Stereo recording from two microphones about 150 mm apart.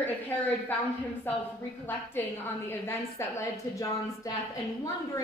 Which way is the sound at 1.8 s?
15° left (ahead or behind).